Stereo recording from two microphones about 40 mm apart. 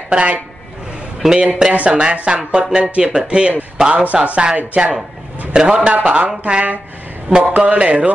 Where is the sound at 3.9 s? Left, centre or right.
Right.